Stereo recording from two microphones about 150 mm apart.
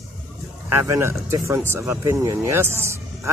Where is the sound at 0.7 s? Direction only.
15° right (ahead or behind).